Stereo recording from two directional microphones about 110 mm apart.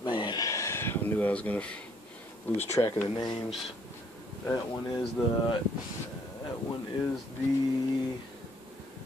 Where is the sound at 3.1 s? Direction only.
45° left (ahead or behind).